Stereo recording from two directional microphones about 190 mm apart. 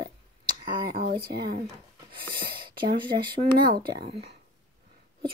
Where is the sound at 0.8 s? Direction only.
50° right (ahead or behind).